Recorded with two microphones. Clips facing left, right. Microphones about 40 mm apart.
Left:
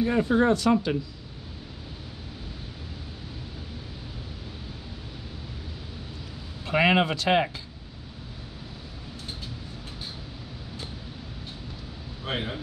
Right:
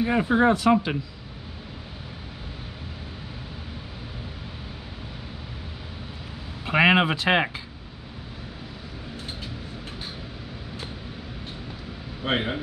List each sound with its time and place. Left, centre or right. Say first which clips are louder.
0.0 s speech: right 2 dB; right
6.6 s speech: right 3 dB; right
12.2 s a man's voice: right 6 dB; right